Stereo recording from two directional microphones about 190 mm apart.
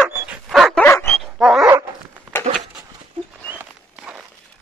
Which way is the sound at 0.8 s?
10° left (ahead or behind).